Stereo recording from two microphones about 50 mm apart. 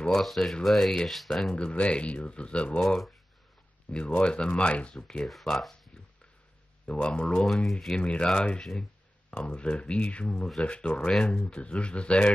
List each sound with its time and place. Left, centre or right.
0.1 s speech: centre
1.6 s speech: left
2.8 s speech: centre
3.9 s speech: left
4.9 s speech: centre
6.9 s speech: centre
7.4 s speech: centre
8.0 s speech: centre
11.4 s speech: left